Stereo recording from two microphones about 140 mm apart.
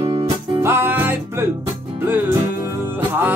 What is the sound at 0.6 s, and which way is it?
Music, 15° right (ahead or behind).